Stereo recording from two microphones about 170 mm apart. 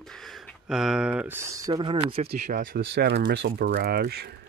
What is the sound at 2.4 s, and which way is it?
Speech, 55° right (ahead or behind).